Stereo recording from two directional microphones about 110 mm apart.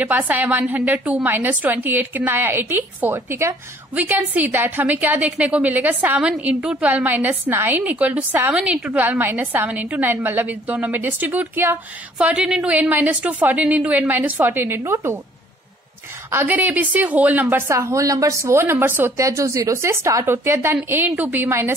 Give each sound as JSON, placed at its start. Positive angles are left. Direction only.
{"t": 0.0, "sound": "a woman's voice", "side_deg": -15}
{"t": 16.3, "sound": "a woman's voice", "side_deg": -20}